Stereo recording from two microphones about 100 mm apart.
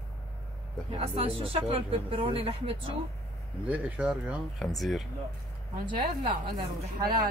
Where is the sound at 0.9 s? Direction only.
65° right (ahead or behind).